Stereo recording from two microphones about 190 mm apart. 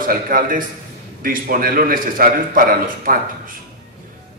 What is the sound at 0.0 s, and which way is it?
A man's voice, 45° right (ahead or behind).